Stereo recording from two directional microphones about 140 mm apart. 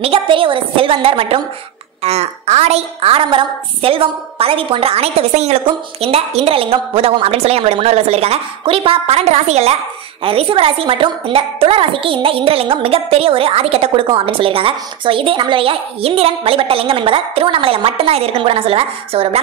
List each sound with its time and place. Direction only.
0.0 s a woman's voice: 40° right (ahead or behind)